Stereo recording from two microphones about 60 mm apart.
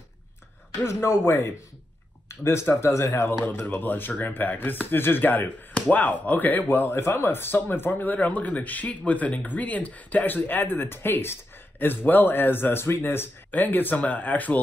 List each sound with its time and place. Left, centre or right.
0.8 s speech: left
3.3 s speech: left